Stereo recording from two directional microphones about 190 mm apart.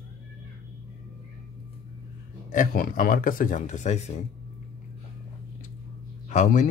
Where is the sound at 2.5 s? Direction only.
45° left (ahead or behind).